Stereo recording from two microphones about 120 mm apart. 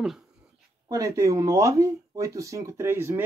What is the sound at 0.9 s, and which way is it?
Speech, 30° right (ahead or behind).